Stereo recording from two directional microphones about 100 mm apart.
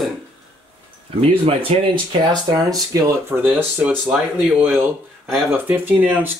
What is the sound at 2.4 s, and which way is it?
Speech, 40° right (ahead or behind).